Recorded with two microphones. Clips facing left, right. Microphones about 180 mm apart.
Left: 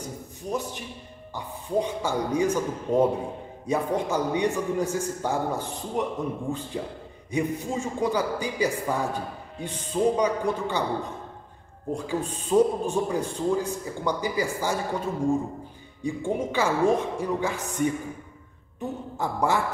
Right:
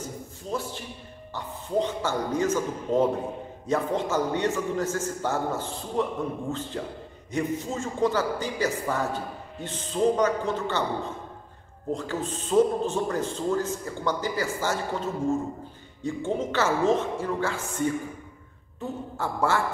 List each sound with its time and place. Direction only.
0.5 s a man's voice: 15° left (ahead or behind)